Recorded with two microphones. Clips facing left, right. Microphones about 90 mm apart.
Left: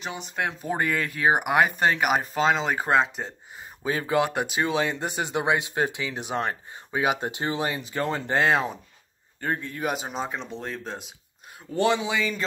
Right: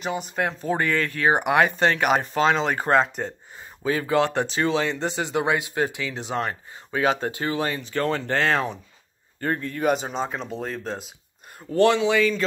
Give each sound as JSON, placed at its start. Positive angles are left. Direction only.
{"t": 0.6, "sound": "speech", "side_deg": 15}
{"t": 3.8, "sound": "speech", "side_deg": 20}